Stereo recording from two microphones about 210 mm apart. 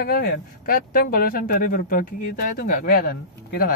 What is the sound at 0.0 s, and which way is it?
Speech, 45° left (ahead or behind).